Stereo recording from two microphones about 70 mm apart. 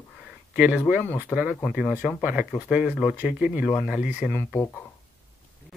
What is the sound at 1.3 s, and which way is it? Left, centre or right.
Speech, centre.